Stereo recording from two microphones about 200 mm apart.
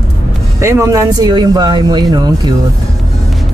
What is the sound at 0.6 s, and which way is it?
Speech, 15° right (ahead or behind).